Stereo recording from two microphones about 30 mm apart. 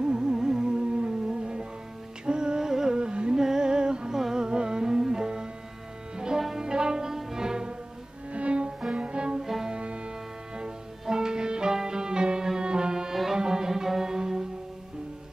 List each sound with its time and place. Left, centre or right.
0.0 s music: right
0.7 s music: right
3.0 s music: right
3.3 s music: centre
4.1 s music: centre
4.5 s music: right
8.3 s music: right
9.4 s music: centre
9.7 s music: right
10.6 s music: right
13.1 s violin: centre
13.4 s music: right